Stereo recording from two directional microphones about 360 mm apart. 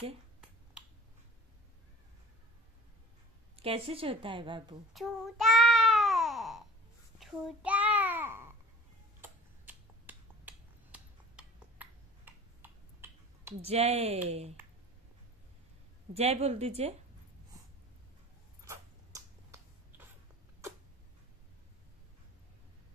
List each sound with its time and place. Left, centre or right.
3.5 s a woman's voice: centre
4.9 s child singing: centre
9.2 s finger snapping: centre
16.1 s a woman's voice: centre
18.7 s a sound: centre